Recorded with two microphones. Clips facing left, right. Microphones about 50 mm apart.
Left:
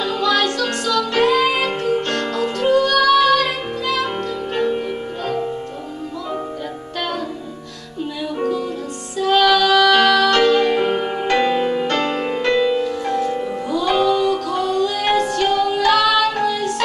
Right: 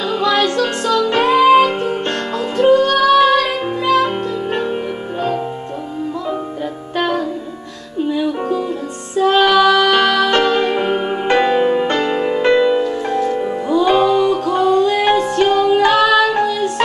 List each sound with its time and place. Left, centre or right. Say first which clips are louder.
0.0 s music: right 2 dB; centre
8.1 s music: right 3 dB; centre
12.0 s music: right 3 dB; centre
12.4 s music: right 4 dB; right
13.2 s music: right 3 dB; centre
13.7 s music: right 4 dB; right